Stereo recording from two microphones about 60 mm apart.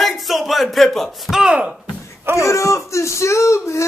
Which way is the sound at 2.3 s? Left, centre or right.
Left.